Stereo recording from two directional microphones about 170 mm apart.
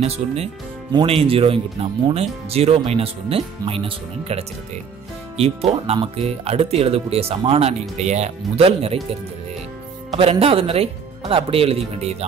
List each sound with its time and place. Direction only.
0.0 s speech: 35° right (ahead or behind)
10.1 s speech: 35° right (ahead or behind)